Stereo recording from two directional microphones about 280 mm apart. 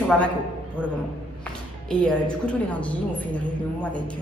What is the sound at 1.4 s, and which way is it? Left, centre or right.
A woman's voice, centre.